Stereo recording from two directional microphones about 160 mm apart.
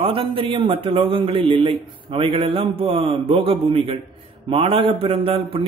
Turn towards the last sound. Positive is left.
turn(degrees=-35)  # may be behind; listen again after turning